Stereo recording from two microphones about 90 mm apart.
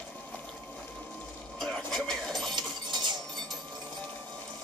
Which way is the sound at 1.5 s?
5° left (ahead or behind).